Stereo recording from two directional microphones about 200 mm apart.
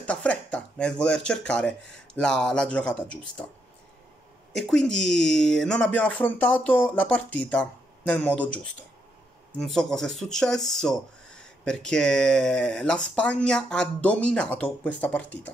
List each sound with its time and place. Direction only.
0.0 s speech: 5° left (ahead or behind)
4.5 s speech: centre (ahead or behind)
9.6 s speech: centre (ahead or behind)